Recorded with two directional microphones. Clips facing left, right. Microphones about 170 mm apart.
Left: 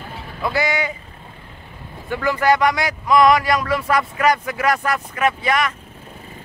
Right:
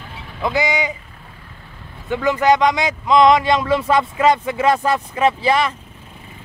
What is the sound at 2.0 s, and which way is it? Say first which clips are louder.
Speech: right 2 dB; 20° right (ahead or behind).